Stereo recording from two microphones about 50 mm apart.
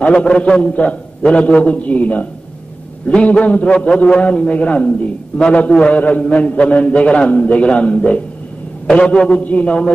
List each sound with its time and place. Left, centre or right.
0.0 s a man's voice: left